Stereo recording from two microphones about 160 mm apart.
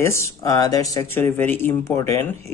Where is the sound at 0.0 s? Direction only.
15° left (ahead or behind).